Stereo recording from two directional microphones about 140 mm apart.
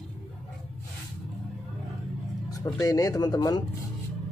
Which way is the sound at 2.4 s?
25° left (ahead or behind).